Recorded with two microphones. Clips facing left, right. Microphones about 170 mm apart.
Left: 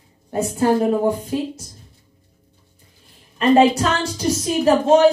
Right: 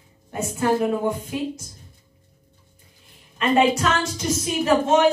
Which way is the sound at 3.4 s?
35° left (ahead or behind).